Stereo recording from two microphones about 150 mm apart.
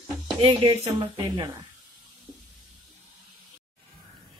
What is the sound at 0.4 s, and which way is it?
Speech, 35° right (ahead or behind).